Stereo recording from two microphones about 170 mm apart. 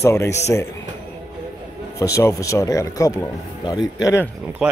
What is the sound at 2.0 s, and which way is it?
Speech, 15° left (ahead or behind).